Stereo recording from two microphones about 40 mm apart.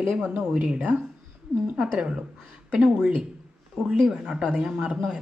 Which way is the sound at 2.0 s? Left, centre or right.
Centre.